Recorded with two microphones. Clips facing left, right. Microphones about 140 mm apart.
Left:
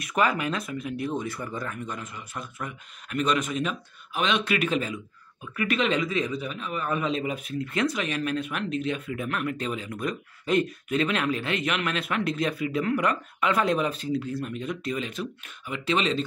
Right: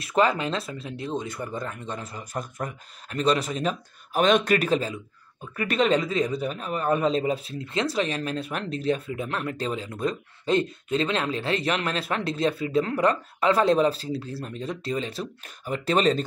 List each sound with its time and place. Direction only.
0.0 s speech: 30° right (ahead or behind)